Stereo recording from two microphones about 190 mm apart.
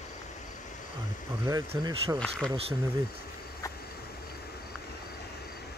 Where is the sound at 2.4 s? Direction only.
30° right (ahead or behind).